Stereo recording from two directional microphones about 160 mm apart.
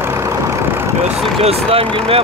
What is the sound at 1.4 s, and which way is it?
Speech, 40° right (ahead or behind).